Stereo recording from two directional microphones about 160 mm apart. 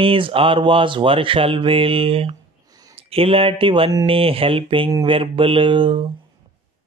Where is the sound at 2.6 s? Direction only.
25° right (ahead or behind).